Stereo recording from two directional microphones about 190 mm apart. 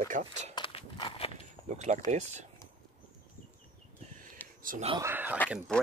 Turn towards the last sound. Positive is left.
turn(degrees=0)  # may be behind; listen again after turning